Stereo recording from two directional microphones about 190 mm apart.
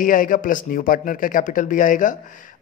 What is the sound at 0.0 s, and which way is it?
Speech, 45° left (ahead or behind).